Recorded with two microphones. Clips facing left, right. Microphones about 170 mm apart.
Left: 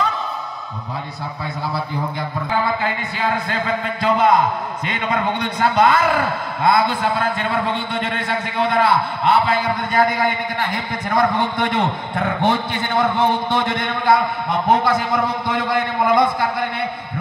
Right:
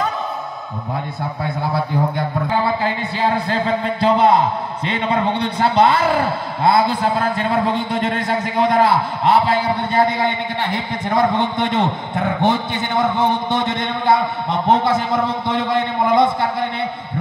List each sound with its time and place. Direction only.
2.6 s speech: 35° right (ahead or behind)